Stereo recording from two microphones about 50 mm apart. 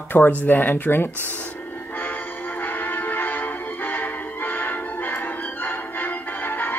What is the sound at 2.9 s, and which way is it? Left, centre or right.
Music, left.